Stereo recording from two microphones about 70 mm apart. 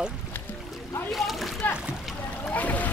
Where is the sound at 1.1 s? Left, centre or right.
Centre.